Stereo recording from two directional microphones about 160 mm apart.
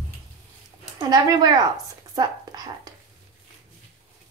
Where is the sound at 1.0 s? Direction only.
25° right (ahead or behind).